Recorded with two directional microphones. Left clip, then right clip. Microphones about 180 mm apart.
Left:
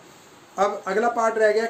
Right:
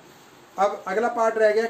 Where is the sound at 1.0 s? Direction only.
15° left (ahead or behind).